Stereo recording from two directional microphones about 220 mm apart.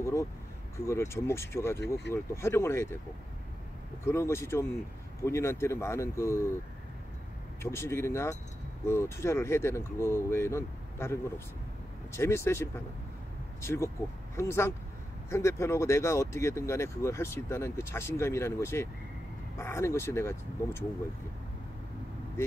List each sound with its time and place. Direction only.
0.0 s vehicle: 10° left (ahead or behind)
0.7 s speech: 10° left (ahead or behind)
4.0 s speech: 10° left (ahead or behind)
7.6 s speech: 10° left (ahead or behind)